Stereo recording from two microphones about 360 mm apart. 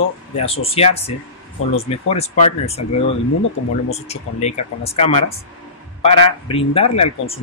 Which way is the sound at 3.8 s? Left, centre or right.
Centre.